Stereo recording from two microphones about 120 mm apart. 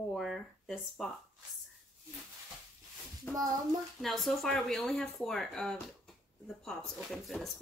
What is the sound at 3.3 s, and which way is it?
Child singing, 15° left (ahead or behind).